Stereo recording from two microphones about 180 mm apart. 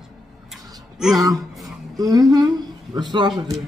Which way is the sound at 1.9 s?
20° right (ahead or behind).